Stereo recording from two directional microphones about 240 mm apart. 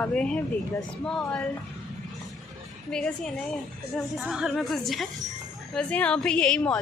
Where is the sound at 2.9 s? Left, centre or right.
Centre.